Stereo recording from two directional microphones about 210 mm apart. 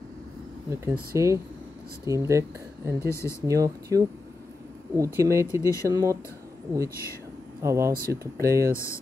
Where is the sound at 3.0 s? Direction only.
15° left (ahead or behind).